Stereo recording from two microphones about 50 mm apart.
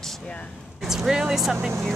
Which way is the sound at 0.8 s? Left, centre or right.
Centre.